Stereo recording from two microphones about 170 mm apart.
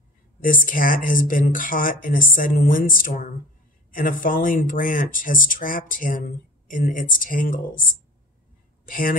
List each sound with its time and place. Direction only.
0.4 s speech: 50° left (ahead or behind)